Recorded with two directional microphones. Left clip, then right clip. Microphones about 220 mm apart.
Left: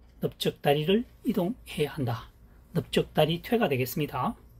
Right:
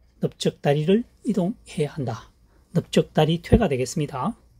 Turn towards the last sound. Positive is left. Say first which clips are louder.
# right 3 dB
turn(degrees=-35)  # may be behind; listen again after turning